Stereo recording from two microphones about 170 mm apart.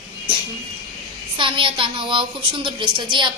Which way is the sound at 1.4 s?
30° right (ahead or behind).